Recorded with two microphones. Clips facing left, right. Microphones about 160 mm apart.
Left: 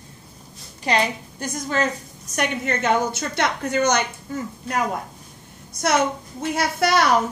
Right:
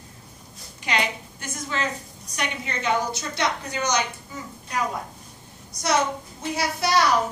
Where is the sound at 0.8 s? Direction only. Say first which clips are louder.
Left 5 dB; 35° left (ahead or behind); by 4.1 s 55° left (ahead or behind).